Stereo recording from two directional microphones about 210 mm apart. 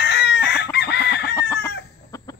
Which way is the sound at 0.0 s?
50° left (ahead or behind).